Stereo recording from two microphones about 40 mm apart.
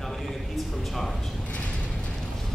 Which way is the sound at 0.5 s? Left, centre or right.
Centre.